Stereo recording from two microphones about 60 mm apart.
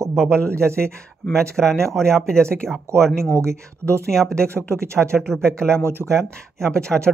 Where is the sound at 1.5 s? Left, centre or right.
Centre.